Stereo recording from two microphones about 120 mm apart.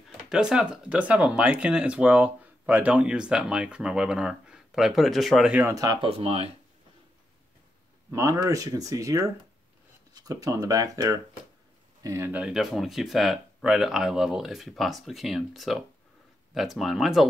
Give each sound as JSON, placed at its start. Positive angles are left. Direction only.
{"t": 0.2, "sound": "speech", "side_deg": -5}
{"t": 5.9, "sound": "speech", "side_deg": -55}
{"t": 8.1, "sound": "speech", "side_deg": -25}
{"t": 12.3, "sound": "speech", "side_deg": -10}